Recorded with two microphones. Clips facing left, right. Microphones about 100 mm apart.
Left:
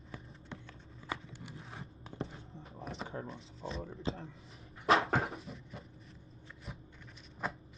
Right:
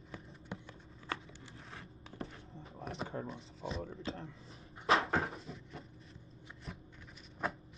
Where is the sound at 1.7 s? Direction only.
30° left (ahead or behind).